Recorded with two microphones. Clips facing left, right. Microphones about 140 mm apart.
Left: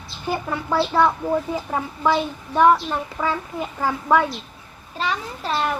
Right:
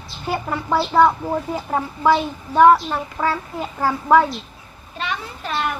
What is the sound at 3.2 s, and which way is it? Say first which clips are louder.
A child's voice: right 3 dB; 5° right (ahead or behind).